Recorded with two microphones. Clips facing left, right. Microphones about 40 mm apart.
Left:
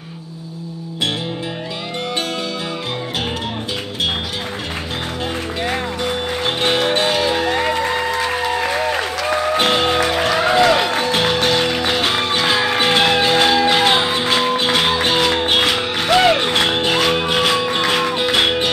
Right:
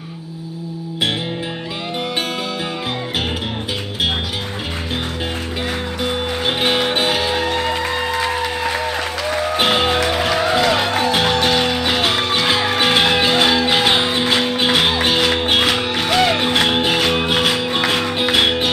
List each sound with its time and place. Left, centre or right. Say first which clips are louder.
6.4 s music: even; centre
9.6 s music: right 2 dB; centre
11.0 s music: right 1 dB; centre